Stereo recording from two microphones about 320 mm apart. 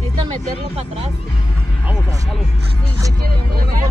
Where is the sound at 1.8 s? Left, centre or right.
Centre.